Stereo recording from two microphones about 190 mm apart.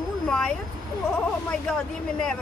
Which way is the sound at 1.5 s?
5° left (ahead or behind).